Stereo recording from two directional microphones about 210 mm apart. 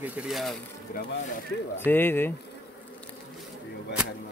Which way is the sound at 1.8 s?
10° left (ahead or behind).